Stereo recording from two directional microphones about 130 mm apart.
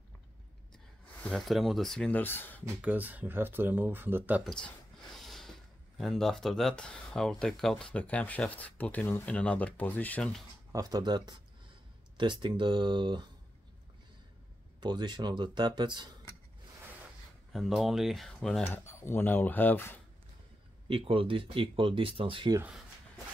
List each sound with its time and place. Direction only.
1.2 s speech: centre (ahead or behind)
2.7 s speech: 10° right (ahead or behind)
4.5 s speech: 5° left (ahead or behind)
10.7 s speech: 30° right (ahead or behind)
14.8 s speech: 35° right (ahead or behind)
17.5 s speech: centre (ahead or behind)
18.7 s speech: 20° left (ahead or behind)
20.9 s speech: 45° right (ahead or behind)